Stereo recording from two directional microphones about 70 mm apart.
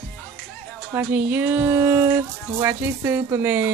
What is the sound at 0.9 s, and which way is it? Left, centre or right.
Speech, right.